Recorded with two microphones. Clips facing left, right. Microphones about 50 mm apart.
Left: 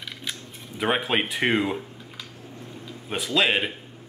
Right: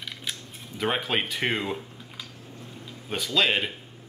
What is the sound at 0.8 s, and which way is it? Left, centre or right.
Speech, centre.